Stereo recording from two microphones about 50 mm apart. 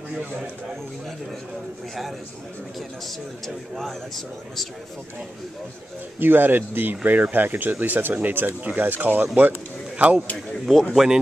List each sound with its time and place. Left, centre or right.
3.1 s speech: centre
6.1 s speech: right
9.9 s a man's voice: right
10.9 s speech: centre